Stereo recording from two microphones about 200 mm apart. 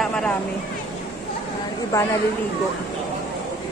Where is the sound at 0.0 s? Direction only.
5° left (ahead or behind).